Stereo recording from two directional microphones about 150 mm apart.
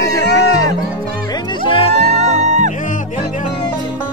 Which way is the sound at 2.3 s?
50° right (ahead or behind).